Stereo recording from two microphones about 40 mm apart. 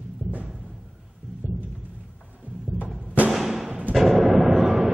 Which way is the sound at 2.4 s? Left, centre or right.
Right.